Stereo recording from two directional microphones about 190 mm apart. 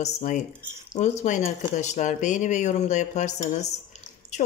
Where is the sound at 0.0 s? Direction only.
40° left (ahead or behind).